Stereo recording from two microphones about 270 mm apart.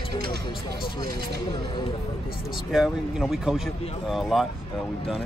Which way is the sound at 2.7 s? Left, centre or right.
Centre.